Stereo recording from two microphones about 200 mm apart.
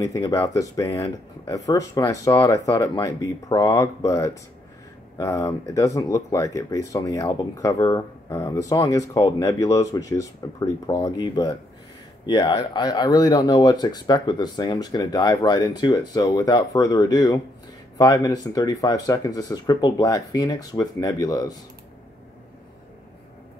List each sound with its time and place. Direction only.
0.0 s speech: 15° left (ahead or behind)